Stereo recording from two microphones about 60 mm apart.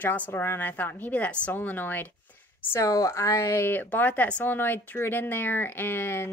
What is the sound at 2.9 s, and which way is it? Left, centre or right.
Speech, left.